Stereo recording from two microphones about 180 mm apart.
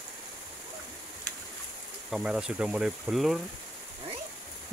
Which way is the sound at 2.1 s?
5° right (ahead or behind).